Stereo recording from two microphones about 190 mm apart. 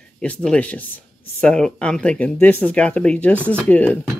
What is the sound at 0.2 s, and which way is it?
Speech, 5° left (ahead or behind).